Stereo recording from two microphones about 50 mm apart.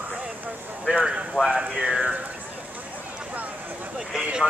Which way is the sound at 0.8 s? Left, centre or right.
Centre.